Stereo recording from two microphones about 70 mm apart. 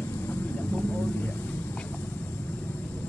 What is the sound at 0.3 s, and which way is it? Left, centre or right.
Vehicle, left.